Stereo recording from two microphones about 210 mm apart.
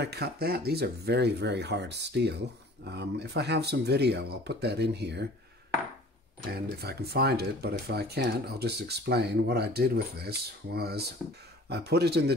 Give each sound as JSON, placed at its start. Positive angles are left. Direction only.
{"t": 0.0, "sound": "speech", "side_deg": -50}
{"t": 6.5, "sound": "speech", "side_deg": -50}